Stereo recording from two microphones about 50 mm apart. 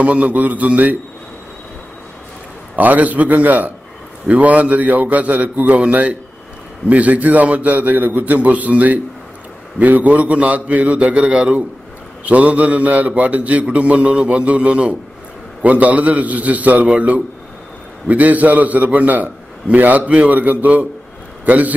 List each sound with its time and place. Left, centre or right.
0.0 s a man's voice: right
2.7 s a man's voice: right